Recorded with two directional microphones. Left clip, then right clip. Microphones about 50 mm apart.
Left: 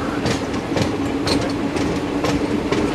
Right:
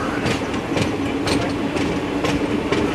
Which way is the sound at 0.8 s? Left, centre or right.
Centre.